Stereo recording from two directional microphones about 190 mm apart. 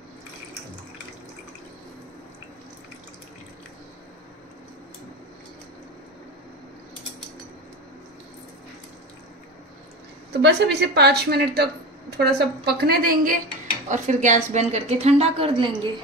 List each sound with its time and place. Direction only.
10.3 s a woman's voice: 60° right (ahead or behind); by 15.7 s 30° right (ahead or behind)